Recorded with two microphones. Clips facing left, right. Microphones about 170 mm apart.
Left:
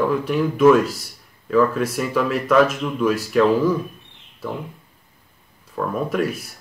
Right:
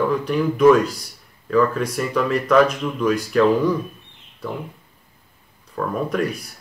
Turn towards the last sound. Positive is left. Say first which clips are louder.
# even
turn(degrees=5)  # may be behind; listen again after turning